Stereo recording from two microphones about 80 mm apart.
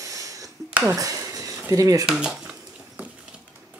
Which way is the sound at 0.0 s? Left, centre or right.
Right.